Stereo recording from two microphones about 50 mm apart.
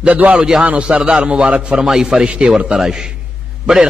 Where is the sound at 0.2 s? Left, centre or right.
Right.